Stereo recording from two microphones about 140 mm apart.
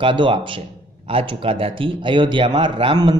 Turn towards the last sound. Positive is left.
turn(degrees=-35)  # may be behind; listen again after turning